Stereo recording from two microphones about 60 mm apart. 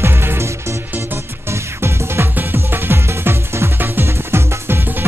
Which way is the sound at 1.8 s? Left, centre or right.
Right.